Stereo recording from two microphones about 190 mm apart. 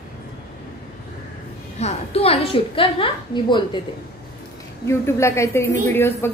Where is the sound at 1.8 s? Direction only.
35° left (ahead or behind).